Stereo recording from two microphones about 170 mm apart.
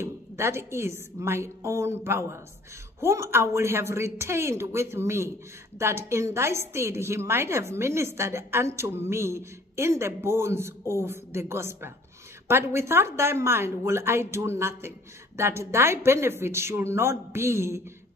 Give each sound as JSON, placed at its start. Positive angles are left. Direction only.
{"t": 0.0, "sound": "a woman's voice", "side_deg": -15}